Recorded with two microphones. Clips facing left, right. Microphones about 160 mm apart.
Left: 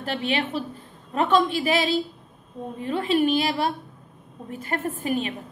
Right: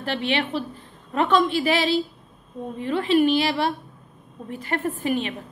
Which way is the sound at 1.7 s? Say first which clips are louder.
Right 1 dB; 45° left (ahead or behind).